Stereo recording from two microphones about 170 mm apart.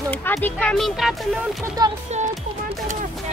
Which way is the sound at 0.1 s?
10° left (ahead or behind).